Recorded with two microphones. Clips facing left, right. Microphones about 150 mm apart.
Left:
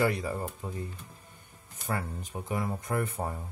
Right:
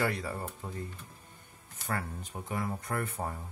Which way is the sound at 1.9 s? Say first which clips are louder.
Left 2 dB; 15° left (ahead or behind).